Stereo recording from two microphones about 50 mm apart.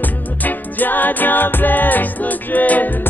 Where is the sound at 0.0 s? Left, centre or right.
Left.